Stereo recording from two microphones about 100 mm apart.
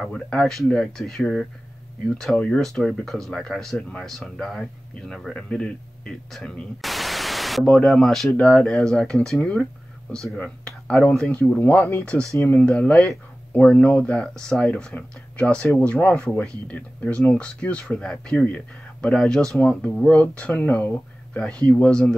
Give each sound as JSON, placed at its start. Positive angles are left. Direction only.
{"t": 0.0, "sound": "speech", "side_deg": 5}